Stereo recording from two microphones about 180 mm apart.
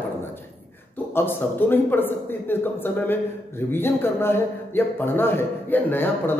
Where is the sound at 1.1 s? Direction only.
10° left (ahead or behind).